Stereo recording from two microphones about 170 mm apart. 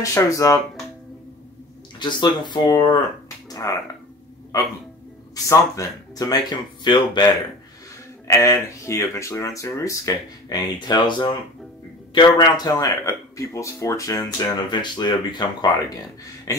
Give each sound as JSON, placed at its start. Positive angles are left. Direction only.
{"t": 0.0, "sound": "speech", "side_deg": 20}
{"t": 2.0, "sound": "speech", "side_deg": 25}
{"t": 5.3, "sound": "speech", "side_deg": 20}
{"t": 8.3, "sound": "speech", "side_deg": 15}